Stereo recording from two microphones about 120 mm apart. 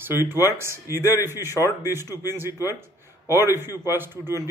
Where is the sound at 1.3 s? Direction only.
30° left (ahead or behind).